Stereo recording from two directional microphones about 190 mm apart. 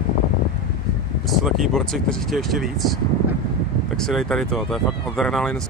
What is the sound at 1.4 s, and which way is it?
Speech, centre (ahead or behind).